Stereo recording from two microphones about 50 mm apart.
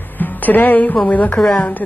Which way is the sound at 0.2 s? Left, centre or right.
Left.